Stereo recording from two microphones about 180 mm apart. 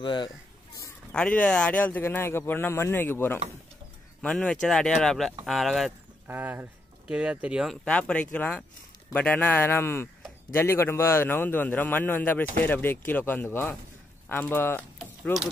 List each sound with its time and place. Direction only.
0.0 s speech: 25° left (ahead or behind)
1.1 s a man's voice: 5° left (ahead or behind)
6.2 s speech: 10° right (ahead or behind)
7.8 s a man's voice: 5° left (ahead or behind)